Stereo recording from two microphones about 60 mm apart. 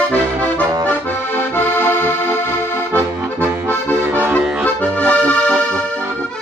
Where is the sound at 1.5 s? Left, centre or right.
Left.